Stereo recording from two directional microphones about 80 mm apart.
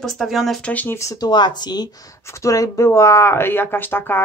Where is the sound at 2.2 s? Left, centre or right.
Left.